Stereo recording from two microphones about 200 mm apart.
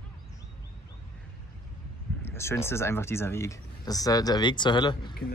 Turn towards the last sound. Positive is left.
turn(degrees=25)  # may be behind; listen again after turning